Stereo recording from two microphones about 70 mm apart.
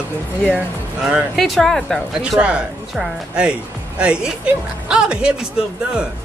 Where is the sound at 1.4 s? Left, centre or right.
Centre.